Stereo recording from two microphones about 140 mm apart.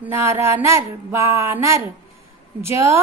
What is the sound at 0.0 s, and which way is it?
A woman's voice, 20° right (ahead or behind).